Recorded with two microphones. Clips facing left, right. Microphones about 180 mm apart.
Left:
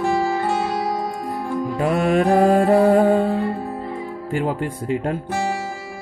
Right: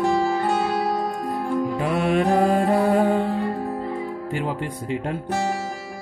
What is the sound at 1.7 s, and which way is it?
Music, 45° left (ahead or behind).